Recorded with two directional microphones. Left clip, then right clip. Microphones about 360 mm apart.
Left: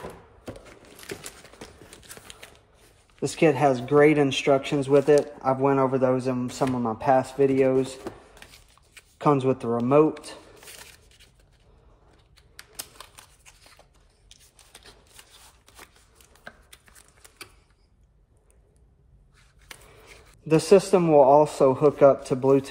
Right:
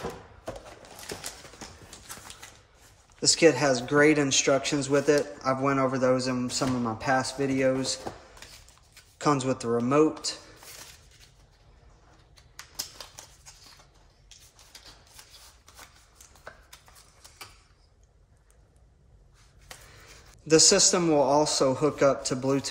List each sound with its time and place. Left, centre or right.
3.2 s a man's voice: centre
9.2 s a man's voice: centre
20.4 s a man's voice: centre